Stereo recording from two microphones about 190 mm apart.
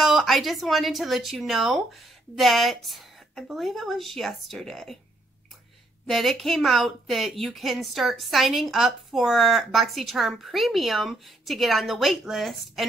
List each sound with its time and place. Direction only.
0.0 s a woman's voice: centre (ahead or behind)
6.0 s a woman's voice: centre (ahead or behind)